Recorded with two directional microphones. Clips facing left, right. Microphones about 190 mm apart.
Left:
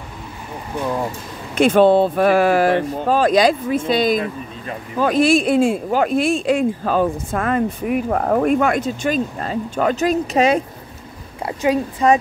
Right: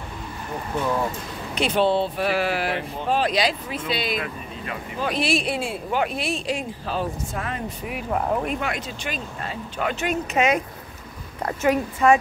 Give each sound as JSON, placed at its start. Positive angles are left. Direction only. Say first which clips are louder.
{"t": 1.5, "sound": "speech", "louder": "left 8 dB", "side_deg": 50}
{"t": 11.7, "sound": "a woman's voice", "louder": "left 2 dB", "side_deg": 30}